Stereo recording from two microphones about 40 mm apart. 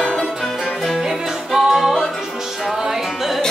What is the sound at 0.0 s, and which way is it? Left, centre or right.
Music, left.